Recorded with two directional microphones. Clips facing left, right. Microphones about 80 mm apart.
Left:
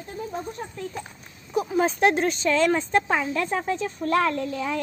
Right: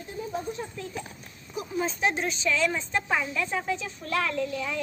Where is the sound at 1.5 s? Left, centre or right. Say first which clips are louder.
Left 8 dB; left.